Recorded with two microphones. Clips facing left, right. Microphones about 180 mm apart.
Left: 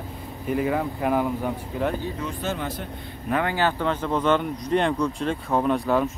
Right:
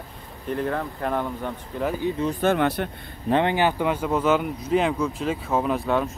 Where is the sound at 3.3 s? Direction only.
20° right (ahead or behind).